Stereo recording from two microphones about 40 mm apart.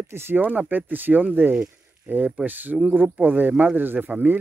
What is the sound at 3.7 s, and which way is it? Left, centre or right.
Speech, right.